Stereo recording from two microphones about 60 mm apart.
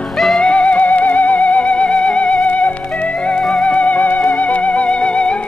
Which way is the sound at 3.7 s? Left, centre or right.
Left.